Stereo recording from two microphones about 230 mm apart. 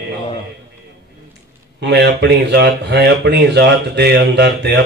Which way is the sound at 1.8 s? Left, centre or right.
Right.